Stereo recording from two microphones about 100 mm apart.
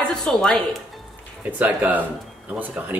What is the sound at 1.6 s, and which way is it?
Speech, 15° right (ahead or behind).